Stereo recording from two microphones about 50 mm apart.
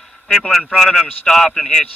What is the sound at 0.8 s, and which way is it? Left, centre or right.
Speech, centre.